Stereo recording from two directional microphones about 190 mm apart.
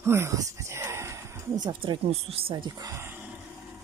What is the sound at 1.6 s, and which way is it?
Speech, 25° right (ahead or behind).